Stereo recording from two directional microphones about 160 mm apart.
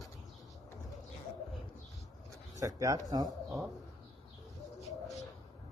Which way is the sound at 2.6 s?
20° right (ahead or behind).